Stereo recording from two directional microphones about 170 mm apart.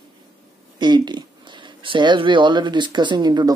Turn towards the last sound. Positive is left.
turn(degrees=-25)  # may be behind; listen again after turning